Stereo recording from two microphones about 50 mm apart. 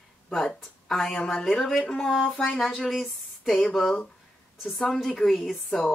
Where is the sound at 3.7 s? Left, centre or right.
Centre.